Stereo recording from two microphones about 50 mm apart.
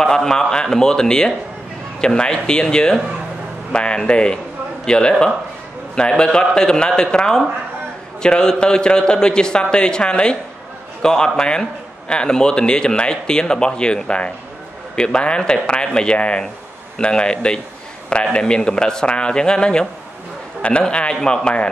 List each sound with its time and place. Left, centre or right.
0.0 s a man's voice: centre
20.9 s a man's voice: centre